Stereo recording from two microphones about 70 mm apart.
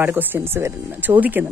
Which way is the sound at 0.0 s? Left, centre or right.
Right.